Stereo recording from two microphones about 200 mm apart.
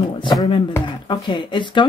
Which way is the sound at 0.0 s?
20° left (ahead or behind).